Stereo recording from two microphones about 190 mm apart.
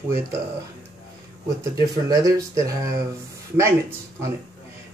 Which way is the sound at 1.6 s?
15° right (ahead or behind).